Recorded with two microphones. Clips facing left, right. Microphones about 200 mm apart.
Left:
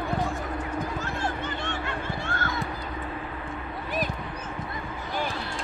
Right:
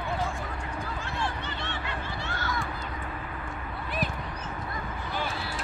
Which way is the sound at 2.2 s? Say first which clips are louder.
Left 1 dB; 50° left (ahead or behind).